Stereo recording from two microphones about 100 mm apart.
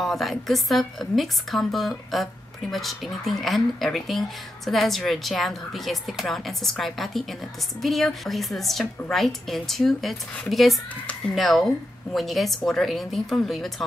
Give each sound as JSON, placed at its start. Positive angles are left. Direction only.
{"t": 0.0, "sound": "a woman's voice", "side_deg": 0}